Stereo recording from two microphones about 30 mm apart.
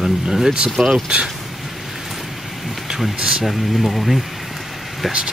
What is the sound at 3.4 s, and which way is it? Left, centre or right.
Speech, centre.